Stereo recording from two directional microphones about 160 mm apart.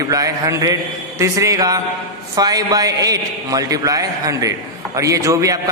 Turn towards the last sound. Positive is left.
turn(degrees=-20)  # may be behind; listen again after turning